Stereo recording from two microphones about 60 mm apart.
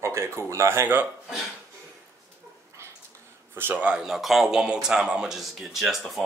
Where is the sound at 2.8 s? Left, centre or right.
Right.